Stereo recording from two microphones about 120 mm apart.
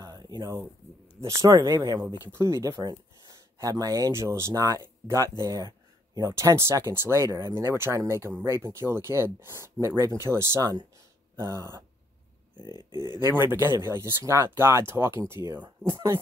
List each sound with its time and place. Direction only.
0.0 s a sound: 35° right (ahead or behind)
1.2 s speech: 30° right (ahead or behind)
12.9 s speech: 35° left (ahead or behind)
13.2 s speech: 20° right (ahead or behind)